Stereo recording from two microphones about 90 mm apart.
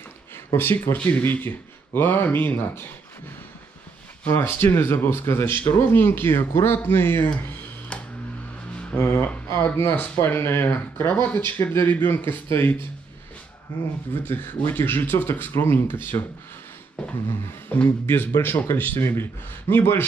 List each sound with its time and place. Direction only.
0.6 s speech: 25° left (ahead or behind)
4.3 s speech: 20° left (ahead or behind)
8.7 s speech: 15° left (ahead or behind)
17.6 s speech: 20° left (ahead or behind)